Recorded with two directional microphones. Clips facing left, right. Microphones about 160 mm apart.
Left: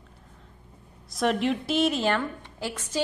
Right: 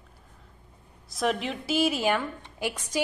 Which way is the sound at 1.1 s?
Centre (ahead or behind).